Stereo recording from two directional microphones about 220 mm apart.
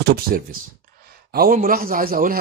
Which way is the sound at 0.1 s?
45° right (ahead or behind).